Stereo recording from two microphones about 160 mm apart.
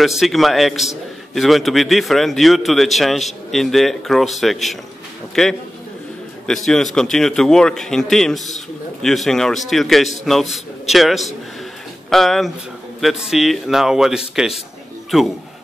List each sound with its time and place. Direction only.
0.0 s a man's voice: centre (ahead or behind)